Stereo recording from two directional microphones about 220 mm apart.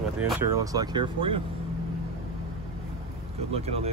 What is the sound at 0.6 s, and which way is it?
Speech, 15° right (ahead or behind).